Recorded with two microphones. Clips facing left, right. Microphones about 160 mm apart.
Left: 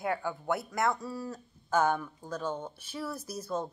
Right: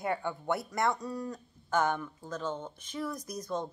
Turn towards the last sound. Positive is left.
turn(degrees=5)  # may be behind; listen again after turning